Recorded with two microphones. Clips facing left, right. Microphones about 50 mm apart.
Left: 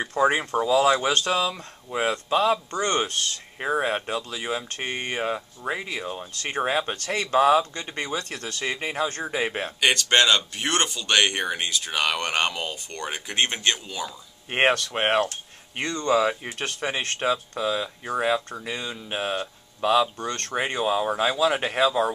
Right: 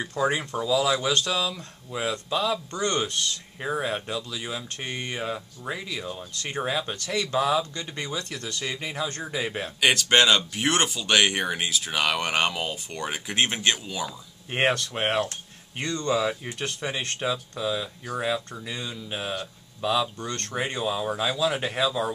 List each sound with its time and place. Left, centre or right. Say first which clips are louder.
0.0 s speech: left 4 dB; left
9.8 s speech: even; centre
14.7 s speech: left 3 dB; left
15.0 s speech: left 3 dB; left